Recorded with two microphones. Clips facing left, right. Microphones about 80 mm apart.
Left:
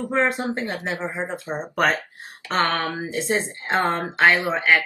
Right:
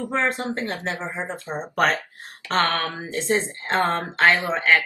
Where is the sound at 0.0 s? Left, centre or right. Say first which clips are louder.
Left 2 dB; centre.